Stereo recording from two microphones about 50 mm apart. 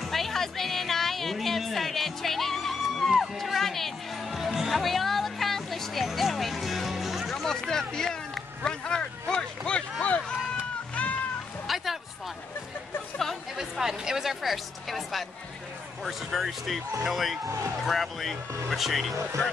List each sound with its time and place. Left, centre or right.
0.0 s music: centre
7.4 s speech: centre
8.6 s a sound: centre
10.2 s run: centre
11.0 s music: left
11.6 s music: centre
13.6 s a woman's voice: centre